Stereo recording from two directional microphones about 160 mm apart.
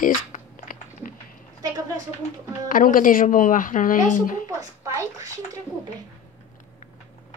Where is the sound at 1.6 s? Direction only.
20° right (ahead or behind).